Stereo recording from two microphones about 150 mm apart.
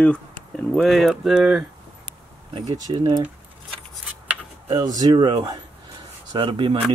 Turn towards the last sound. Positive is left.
turn(degrees=-35)  # may be behind; listen again after turning